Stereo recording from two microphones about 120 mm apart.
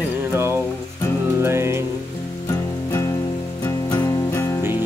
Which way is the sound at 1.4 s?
20° right (ahead or behind).